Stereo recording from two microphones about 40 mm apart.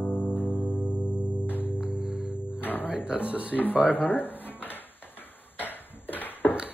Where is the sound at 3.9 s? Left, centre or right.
Left.